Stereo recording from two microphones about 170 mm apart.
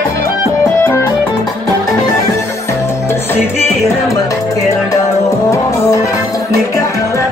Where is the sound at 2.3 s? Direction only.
15° left (ahead or behind).